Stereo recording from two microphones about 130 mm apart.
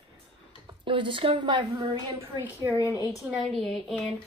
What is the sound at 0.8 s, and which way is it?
Speech, 40° right (ahead or behind).